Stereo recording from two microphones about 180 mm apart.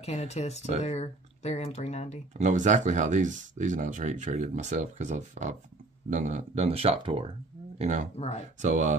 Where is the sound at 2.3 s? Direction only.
40° right (ahead or behind).